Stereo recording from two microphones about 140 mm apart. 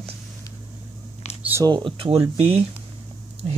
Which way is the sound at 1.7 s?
35° right (ahead or behind).